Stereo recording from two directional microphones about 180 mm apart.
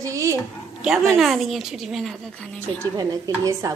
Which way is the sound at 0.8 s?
5° right (ahead or behind).